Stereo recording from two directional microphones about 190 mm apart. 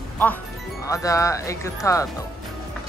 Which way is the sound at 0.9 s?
15° left (ahead or behind).